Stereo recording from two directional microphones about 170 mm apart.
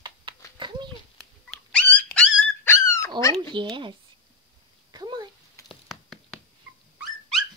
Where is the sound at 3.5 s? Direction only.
30° right (ahead or behind).